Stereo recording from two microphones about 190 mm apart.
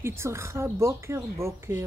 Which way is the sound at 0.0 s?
15° right (ahead or behind).